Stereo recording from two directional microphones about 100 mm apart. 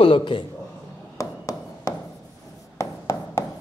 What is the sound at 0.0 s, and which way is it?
Speech, 60° left (ahead or behind).